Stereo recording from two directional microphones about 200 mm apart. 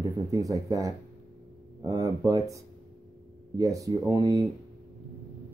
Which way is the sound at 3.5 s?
15° right (ahead or behind).